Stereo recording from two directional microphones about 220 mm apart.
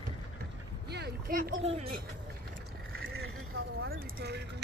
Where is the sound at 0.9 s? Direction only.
45° right (ahead or behind).